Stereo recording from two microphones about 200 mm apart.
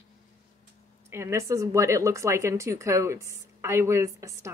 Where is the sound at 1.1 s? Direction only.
15° right (ahead or behind).